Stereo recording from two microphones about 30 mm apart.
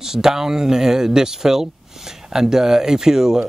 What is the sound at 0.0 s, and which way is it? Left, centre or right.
A man's voice, centre.